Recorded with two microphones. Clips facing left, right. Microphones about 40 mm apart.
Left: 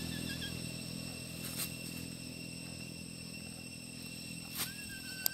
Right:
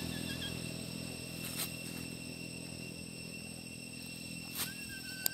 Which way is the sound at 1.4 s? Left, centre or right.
Right.